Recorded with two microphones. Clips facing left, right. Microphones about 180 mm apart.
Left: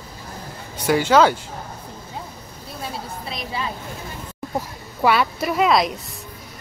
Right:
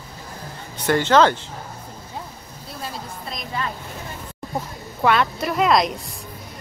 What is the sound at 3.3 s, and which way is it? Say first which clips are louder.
Speech: even; 10° left (ahead or behind).